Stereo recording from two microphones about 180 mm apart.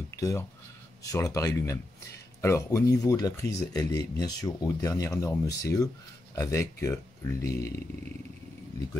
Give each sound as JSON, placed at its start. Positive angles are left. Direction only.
{"t": 0.1, "sound": "speech", "side_deg": 15}